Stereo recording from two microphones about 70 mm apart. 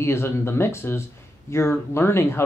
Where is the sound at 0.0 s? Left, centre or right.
Left.